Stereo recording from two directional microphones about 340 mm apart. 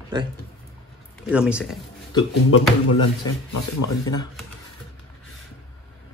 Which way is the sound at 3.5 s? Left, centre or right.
Left.